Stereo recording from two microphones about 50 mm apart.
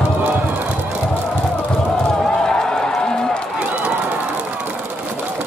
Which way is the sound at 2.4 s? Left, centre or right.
Centre.